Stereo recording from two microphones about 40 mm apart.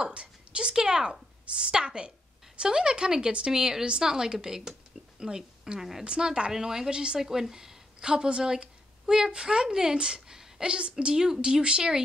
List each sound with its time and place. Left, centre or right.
0.0 s a woman's voice: right; by 6.0 s centre
6.0 s a woman's voice: right
6.5 s a woman's voice: centre
7.2 s a woman's voice: centre